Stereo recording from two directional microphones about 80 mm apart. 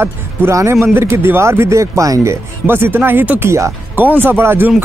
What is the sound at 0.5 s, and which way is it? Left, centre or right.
Speech, right.